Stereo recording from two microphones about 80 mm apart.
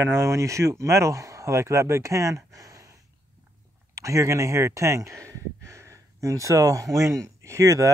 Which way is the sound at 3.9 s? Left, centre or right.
Right.